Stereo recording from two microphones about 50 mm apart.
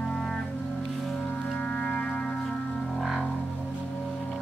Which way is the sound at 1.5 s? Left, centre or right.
Left.